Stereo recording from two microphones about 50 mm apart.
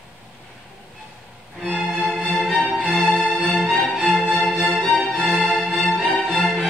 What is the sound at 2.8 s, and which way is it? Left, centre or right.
Music, left.